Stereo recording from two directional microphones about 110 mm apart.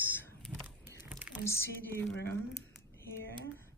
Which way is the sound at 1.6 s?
20° left (ahead or behind).